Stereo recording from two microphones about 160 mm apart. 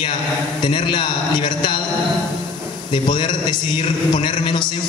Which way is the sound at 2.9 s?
30° left (ahead or behind).